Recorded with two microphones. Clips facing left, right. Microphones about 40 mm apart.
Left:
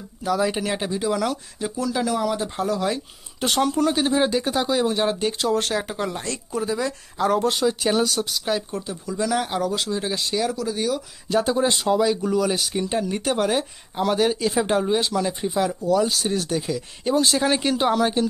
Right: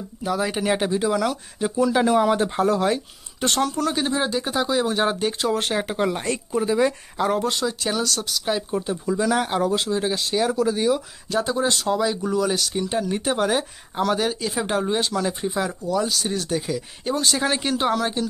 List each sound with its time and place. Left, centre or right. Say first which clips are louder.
0.5 s speech: right 3 dB; centre
1.9 s speech: right 4 dB; right
2.5 s speech: right 3 dB; centre
3.3 s speech: left 2 dB; centre
5.7 s speech: right 3 dB; centre
6.5 s speech: right 4 dB; centre
7.5 s speech: left 3 dB; centre
8.5 s speech: right 2 dB; centre
10.5 s speech: right 5 dB; right
11.2 s speech: left 2 dB; centre
13.2 s speech: even; centre